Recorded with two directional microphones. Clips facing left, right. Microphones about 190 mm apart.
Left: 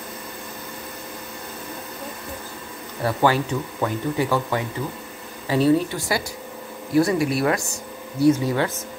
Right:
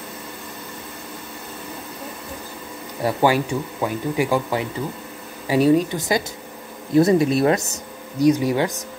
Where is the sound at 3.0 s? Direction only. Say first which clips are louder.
Right 2 dB; 15° right (ahead or behind).